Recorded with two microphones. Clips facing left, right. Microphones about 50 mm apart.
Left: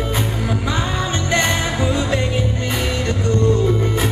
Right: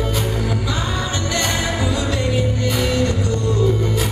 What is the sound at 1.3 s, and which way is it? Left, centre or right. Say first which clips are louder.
Music: left 4 dB; left.